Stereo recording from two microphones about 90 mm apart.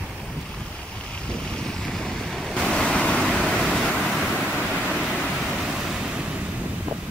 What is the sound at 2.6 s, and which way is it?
Vehicle, 10° left (ahead or behind).